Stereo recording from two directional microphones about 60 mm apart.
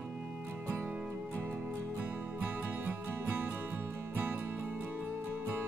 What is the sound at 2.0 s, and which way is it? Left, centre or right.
Music, right.